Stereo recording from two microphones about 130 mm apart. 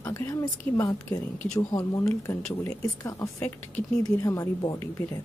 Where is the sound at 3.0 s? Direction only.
25° left (ahead or behind).